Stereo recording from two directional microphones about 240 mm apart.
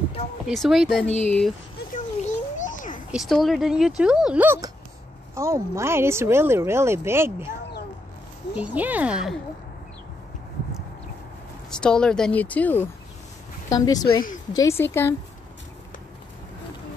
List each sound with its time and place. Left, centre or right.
0.5 s speech: centre
2.2 s a sound: left
3.1 s speech: centre
8.5 s speech: centre
11.7 s speech: centre